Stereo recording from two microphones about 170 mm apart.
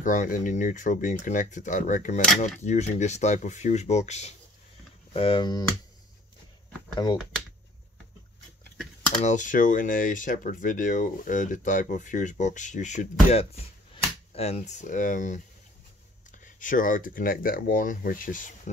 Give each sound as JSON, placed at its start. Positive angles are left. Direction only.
{"t": 0.0, "sound": "speech", "side_deg": 50}
{"t": 5.1, "sound": "speech", "side_deg": 30}
{"t": 9.2, "sound": "speech", "side_deg": 45}